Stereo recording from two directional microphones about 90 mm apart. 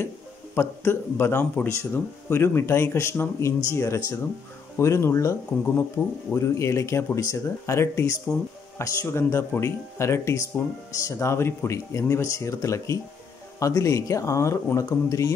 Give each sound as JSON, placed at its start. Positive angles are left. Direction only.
{"t": 0.6, "sound": "speech", "side_deg": 25}